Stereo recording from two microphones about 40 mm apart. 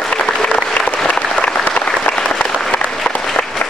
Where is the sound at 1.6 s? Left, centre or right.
Left.